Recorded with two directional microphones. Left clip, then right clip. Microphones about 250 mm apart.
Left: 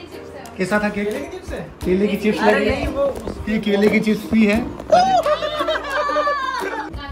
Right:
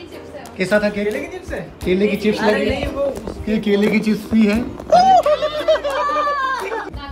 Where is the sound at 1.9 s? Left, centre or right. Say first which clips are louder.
Right 2 dB; centre.